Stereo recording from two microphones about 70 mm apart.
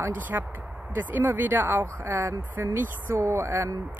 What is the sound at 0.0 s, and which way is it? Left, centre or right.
A woman's voice, right.